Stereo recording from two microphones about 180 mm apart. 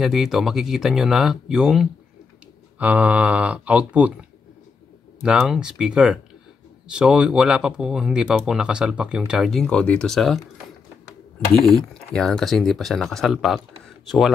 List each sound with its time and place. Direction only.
0.0 s speech: centre (ahead or behind)
11.5 s speech: centre (ahead or behind)